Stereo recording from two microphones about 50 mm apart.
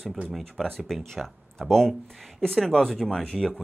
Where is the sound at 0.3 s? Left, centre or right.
Centre.